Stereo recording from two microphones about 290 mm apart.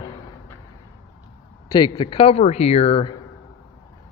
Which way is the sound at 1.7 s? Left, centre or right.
Centre.